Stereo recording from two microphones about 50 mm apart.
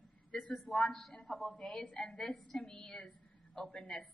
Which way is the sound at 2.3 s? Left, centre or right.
Centre.